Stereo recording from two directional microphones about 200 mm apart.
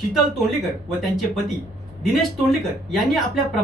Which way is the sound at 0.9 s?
Centre (ahead or behind).